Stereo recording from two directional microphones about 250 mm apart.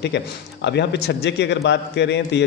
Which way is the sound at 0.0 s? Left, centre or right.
Left.